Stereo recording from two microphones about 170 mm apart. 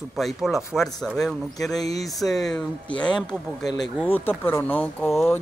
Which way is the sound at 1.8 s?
20° left (ahead or behind).